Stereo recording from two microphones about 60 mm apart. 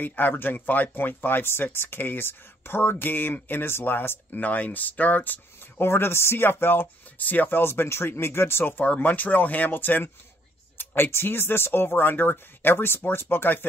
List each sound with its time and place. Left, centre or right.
0.0 s speech: left
4.4 s speech: left
5.9 s speech: left
8.8 s speech: left